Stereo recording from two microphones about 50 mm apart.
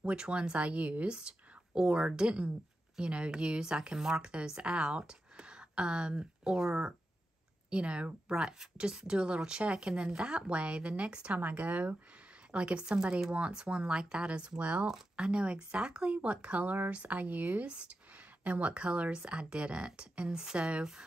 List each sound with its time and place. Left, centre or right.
0.0 s speech: centre
11.3 s speech: right; by 21.0 s centre